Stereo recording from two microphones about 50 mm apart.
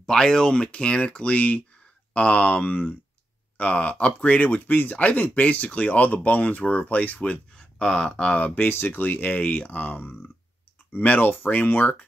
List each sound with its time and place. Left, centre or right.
0.0 s speech: centre
8.4 s speech: left
8.6 s speech: left